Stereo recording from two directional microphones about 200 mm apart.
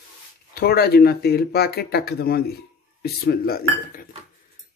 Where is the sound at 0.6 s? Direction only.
50° left (ahead or behind).